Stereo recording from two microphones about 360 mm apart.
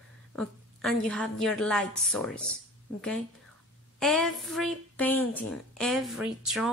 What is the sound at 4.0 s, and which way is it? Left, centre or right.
A woman's voice, centre.